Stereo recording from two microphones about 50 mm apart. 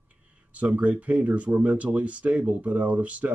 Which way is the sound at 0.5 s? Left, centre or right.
Right.